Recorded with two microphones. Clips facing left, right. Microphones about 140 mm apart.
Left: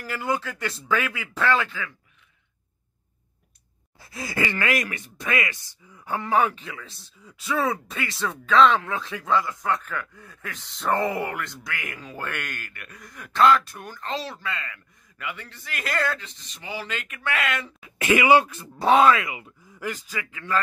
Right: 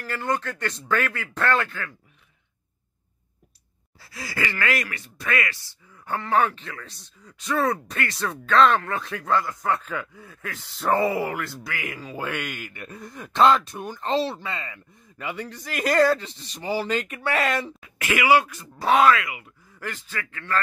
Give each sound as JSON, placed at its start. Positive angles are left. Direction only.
{"t": 0.0, "sound": "speech", "side_deg": 10}
{"t": 4.0, "sound": "speech", "side_deg": 20}
{"t": 12.7, "sound": "speech", "side_deg": -25}
{"t": 17.8, "sound": "speech", "side_deg": 25}
{"t": 19.8, "sound": "speech", "side_deg": 15}